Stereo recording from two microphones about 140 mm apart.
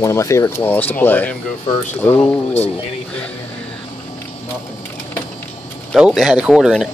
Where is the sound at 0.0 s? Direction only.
20° left (ahead or behind).